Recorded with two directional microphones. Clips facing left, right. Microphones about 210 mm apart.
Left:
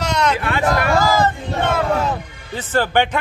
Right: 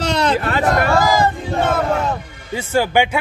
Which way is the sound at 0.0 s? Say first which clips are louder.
Right 2 dB; 30° right (ahead or behind).